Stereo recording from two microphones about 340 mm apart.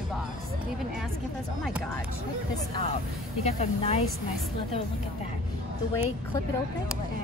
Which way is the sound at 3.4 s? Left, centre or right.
Centre.